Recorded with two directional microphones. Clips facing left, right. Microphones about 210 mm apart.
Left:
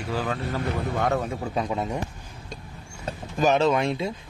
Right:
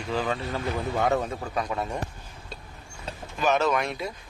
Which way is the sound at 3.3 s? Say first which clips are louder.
Left 3 dB; 30° left (ahead or behind).